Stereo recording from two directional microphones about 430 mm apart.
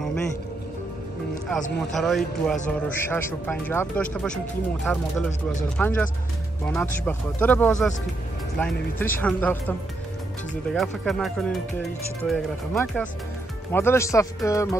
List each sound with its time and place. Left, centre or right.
1.8 s speech: centre